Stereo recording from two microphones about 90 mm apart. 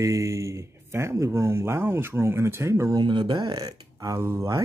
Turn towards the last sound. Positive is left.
turn(degrees=-35)  # may be behind; listen again after turning